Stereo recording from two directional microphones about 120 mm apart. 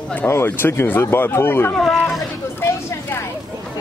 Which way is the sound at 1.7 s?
5° left (ahead or behind).